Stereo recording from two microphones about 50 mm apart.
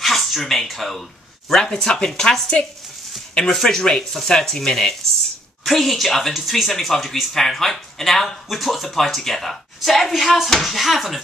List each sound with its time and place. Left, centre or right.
0.0 s speech: centre
3.4 s speech: centre